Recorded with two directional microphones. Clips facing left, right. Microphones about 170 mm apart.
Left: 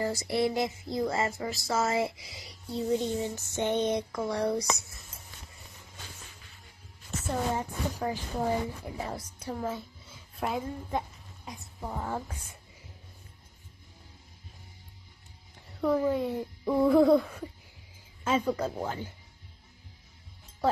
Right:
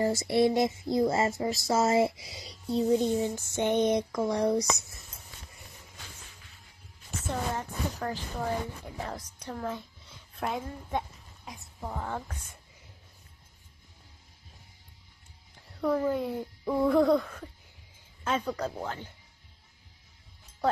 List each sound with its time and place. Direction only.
0.0 s child singing: 25° right (ahead or behind)
7.2 s a woman's voice: 10° left (ahead or behind)
15.7 s speech: centre (ahead or behind)